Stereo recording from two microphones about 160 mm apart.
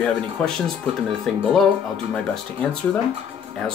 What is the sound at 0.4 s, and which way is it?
Speech, 5° left (ahead or behind).